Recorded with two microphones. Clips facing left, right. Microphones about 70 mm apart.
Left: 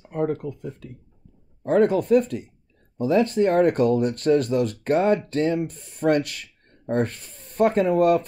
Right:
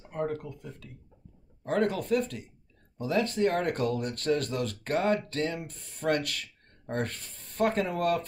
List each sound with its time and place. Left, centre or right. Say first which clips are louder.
0.1 s speech: left 7 dB; left
1.7 s speech: left 9 dB; centre